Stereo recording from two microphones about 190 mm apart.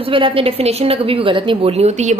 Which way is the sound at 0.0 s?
30° right (ahead or behind).